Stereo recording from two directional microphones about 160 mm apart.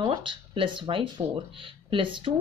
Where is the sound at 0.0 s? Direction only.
30° right (ahead or behind).